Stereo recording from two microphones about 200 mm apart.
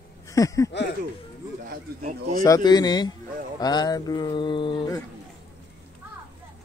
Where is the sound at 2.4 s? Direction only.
20° left (ahead or behind).